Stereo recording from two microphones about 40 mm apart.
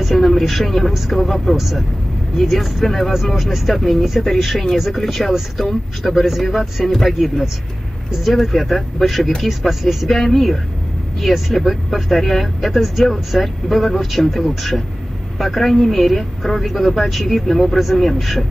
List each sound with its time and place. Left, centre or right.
0.0 s a woman's voice: centre
5.0 s speech: centre